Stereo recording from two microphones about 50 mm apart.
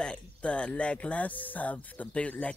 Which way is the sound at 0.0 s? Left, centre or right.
Left.